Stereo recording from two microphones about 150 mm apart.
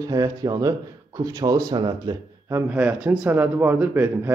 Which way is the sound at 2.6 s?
10° right (ahead or behind).